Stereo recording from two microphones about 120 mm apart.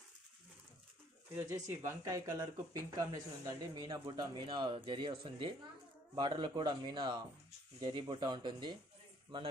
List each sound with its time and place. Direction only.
1.7 s speech: 20° right (ahead or behind); by 8.7 s 40° right (ahead or behind)